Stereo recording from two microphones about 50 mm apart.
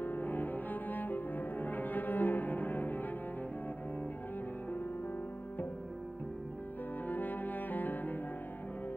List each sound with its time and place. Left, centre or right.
0.0 s cello: left
7.1 s music: left